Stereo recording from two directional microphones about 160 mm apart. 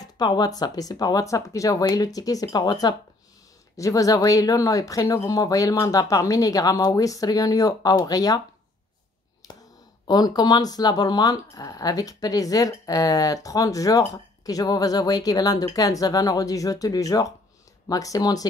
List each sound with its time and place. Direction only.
0.0 s speech: 25° left (ahead or behind)
9.4 s clicking: 20° left (ahead or behind)
10.0 s speech: 25° left (ahead or behind)